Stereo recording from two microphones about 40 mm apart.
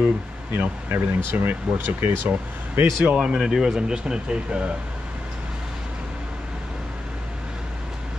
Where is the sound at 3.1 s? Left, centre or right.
Right.